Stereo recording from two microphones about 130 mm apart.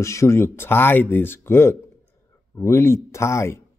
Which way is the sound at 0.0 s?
20° left (ahead or behind).